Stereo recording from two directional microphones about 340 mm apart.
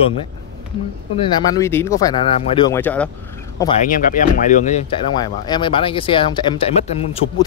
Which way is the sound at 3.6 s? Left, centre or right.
Left.